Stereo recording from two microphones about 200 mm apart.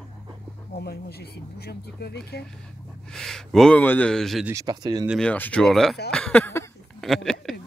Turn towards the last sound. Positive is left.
turn(degrees=0)  # may be behind; listen again after turning